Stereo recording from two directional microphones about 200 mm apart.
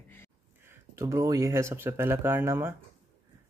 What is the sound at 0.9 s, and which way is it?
Speech, 15° right (ahead or behind).